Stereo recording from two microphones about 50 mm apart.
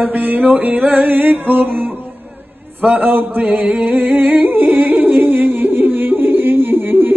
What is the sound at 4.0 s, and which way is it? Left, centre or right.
Music, right.